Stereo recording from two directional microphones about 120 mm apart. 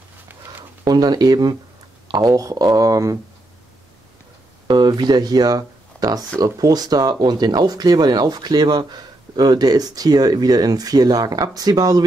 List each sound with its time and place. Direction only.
0.8 s speech: 35° right (ahead or behind)
4.6 s speech: 35° right (ahead or behind)